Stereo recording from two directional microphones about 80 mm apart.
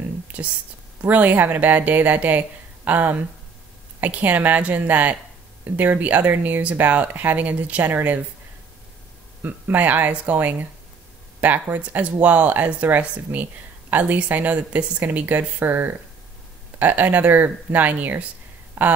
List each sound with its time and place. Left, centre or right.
0.3 s speech: centre
9.4 s speech: right